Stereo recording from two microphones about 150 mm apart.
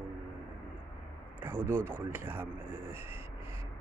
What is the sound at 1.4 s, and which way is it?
Speech, 15° right (ahead or behind).